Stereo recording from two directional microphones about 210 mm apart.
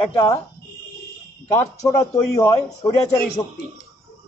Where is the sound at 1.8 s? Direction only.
15° left (ahead or behind).